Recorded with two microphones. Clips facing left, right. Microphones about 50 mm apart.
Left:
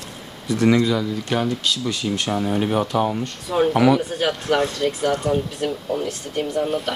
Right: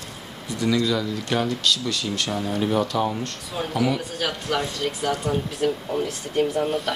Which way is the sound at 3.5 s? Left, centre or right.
Left.